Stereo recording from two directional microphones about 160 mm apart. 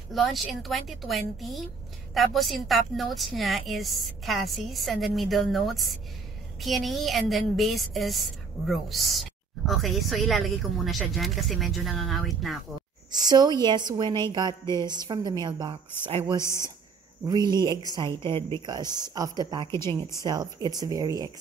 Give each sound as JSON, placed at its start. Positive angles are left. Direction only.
{"t": 0.1, "sound": "a woman's voice", "side_deg": 0}
{"t": 13.1, "sound": "a woman's voice", "side_deg": -25}
{"t": 16.3, "sound": "a woman's voice", "side_deg": 15}
{"t": 17.3, "sound": "a woman's voice", "side_deg": -25}
{"t": 19.7, "sound": "a woman's voice", "side_deg": 15}
{"t": 20.2, "sound": "a woman's voice", "side_deg": -25}